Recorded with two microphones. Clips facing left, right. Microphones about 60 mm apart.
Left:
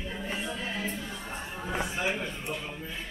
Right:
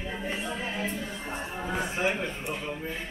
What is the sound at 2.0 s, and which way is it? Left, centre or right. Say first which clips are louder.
Speech: right 3 dB; right.